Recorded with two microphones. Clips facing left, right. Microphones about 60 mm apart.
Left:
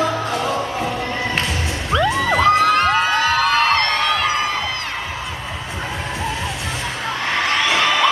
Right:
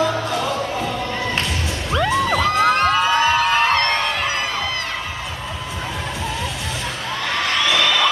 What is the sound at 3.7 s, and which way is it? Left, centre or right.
Crowd, right.